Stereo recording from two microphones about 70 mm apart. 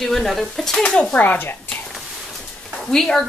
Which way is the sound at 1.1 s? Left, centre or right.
Left.